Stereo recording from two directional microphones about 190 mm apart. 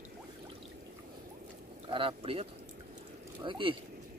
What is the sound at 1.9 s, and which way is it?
Speech, 25° right (ahead or behind).